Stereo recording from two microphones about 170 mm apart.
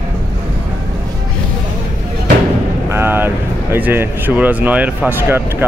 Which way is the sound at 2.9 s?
15° right (ahead or behind).